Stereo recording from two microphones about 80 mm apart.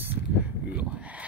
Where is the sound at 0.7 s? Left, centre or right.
Centre.